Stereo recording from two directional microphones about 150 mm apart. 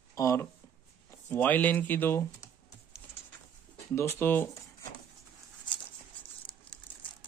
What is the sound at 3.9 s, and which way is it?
Speech, 20° left (ahead or behind).